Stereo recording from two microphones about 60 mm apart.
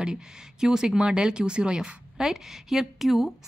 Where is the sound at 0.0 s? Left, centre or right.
Centre.